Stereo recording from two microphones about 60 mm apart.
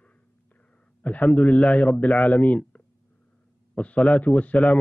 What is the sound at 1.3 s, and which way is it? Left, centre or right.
Speech, left.